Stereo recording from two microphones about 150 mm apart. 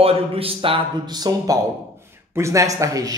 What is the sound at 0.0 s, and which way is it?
Speech, 40° right (ahead or behind).